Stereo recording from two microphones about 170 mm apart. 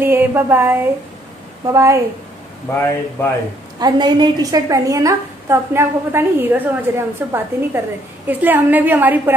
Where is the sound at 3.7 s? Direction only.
25° right (ahead or behind).